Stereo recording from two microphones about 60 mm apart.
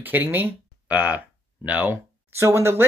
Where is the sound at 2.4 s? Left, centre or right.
Right.